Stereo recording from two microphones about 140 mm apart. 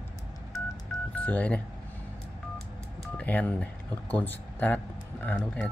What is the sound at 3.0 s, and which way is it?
Telephone dialing, 10° left (ahead or behind).